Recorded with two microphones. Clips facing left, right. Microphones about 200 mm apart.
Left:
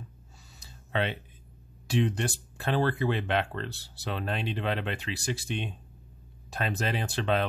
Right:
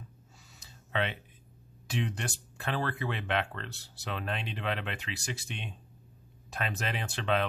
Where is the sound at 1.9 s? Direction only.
30° left (ahead or behind).